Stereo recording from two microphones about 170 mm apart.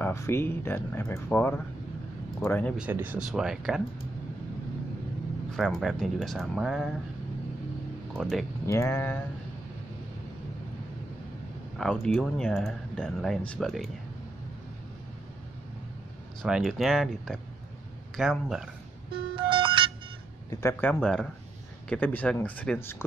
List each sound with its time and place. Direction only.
0.0 s speech: 15° left (ahead or behind)
2.8 s speech: 10° right (ahead or behind)
5.6 s speech: centre (ahead or behind)
8.2 s speech: centre (ahead or behind)
8.6 s speech: 15° left (ahead or behind)
11.8 s speech: centre (ahead or behind)
16.4 s speech: 5° right (ahead or behind)
19.3 s music: 30° right (ahead or behind)
20.4 s speech: 15° left (ahead or behind)
20.9 s speech: 5° left (ahead or behind)